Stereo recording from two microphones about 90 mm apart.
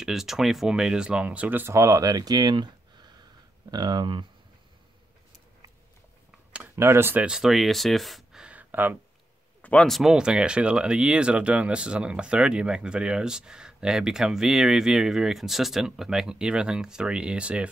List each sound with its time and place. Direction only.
0.0 s speech: 5° right (ahead or behind)
1.7 s speech: 35° right (ahead or behind); by 4.3 s 60° right (ahead or behind)
6.7 s speech: 30° right (ahead or behind)
7.2 s speech: 5° right (ahead or behind)
9.6 s a sound: 15° left (ahead or behind)
9.8 s speech: centre (ahead or behind)